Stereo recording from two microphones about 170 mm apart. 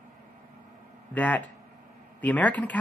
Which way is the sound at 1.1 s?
10° left (ahead or behind).